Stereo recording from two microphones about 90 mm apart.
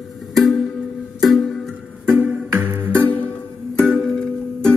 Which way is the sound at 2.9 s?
15° left (ahead or behind).